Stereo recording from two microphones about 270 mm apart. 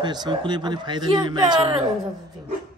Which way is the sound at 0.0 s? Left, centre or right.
Centre.